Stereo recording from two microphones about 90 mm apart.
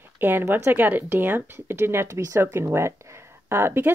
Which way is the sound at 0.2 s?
25° right (ahead or behind).